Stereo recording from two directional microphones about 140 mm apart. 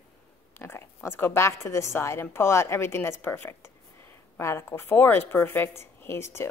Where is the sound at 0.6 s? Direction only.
15° left (ahead or behind).